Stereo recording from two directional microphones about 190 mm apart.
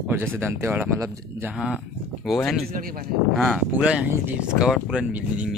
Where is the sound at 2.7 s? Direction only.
50° right (ahead or behind).